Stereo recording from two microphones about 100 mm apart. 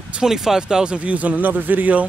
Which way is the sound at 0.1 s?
5° right (ahead or behind).